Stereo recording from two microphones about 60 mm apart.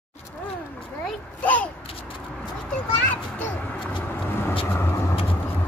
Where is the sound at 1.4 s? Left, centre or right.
Left.